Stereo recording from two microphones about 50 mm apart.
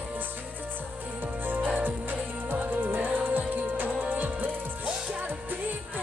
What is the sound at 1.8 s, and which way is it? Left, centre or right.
Music, right.